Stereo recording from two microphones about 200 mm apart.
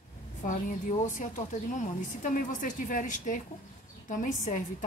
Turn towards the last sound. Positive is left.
turn(degrees=40)  # may be behind; listen again after turning